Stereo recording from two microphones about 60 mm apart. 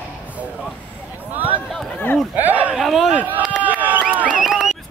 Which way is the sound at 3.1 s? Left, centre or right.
Right.